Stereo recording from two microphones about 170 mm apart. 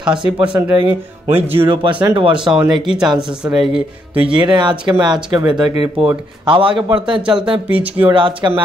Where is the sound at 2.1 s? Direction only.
30° right (ahead or behind).